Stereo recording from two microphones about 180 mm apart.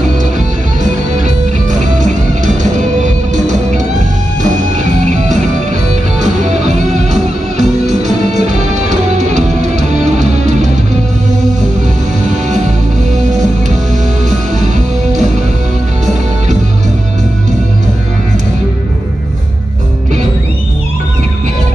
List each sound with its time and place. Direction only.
1.2 s music: 45° right (ahead or behind)
7.1 s music: 40° right (ahead or behind)